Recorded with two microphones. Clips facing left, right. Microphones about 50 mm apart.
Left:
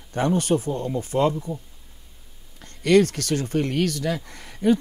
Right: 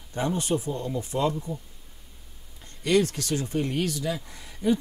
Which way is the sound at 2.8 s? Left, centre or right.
Left.